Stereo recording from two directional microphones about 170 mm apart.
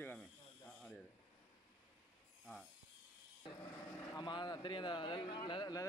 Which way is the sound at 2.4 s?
Centre (ahead or behind).